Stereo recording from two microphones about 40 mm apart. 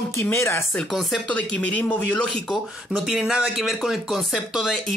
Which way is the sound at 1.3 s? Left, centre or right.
Left.